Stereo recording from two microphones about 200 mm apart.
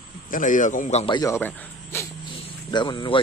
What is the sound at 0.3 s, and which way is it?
Speech, 40° left (ahead or behind).